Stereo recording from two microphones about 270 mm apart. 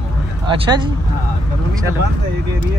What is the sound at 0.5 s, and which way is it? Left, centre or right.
Speech, centre.